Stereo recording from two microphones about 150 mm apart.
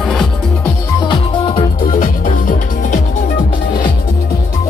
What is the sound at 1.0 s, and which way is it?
Music, 35° left (ahead or behind).